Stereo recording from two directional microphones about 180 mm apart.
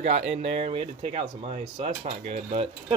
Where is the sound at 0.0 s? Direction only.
35° right (ahead or behind).